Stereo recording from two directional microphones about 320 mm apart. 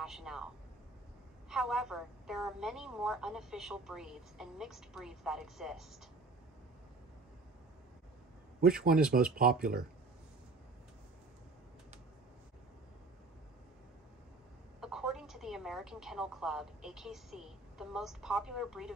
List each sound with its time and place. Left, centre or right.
0.0 s a man's voice: centre
1.5 s a woman's voice: centre
8.5 s speech: right
14.8 s a woman's voice: centre